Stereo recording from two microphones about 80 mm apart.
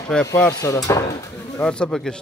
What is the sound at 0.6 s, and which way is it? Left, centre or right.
Speech, left.